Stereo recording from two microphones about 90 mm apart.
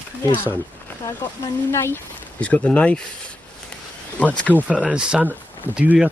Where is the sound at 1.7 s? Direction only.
25° left (ahead or behind).